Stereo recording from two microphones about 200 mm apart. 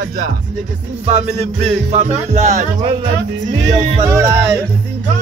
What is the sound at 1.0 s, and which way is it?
Music, 30° right (ahead or behind).